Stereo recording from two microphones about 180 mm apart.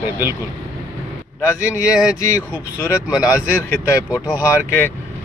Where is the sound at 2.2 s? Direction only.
15° left (ahead or behind).